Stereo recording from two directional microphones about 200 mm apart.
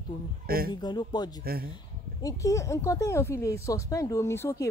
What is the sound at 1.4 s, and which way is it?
Speech, 50° right (ahead or behind).